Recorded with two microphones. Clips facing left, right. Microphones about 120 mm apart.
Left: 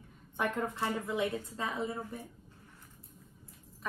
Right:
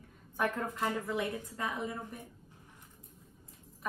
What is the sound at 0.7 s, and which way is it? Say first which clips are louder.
Speech: left 1 dB; 20° left (ahead or behind).